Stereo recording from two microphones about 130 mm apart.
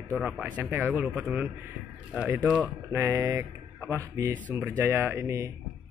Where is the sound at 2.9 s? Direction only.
25° right (ahead or behind).